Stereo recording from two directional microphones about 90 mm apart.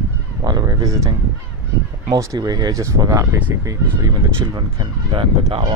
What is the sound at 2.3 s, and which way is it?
Speech, 50° right (ahead or behind).